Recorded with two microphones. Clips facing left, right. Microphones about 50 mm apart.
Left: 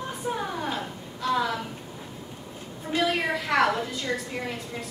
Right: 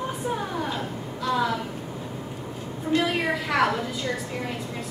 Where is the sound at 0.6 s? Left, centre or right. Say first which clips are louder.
Right 2 dB; centre.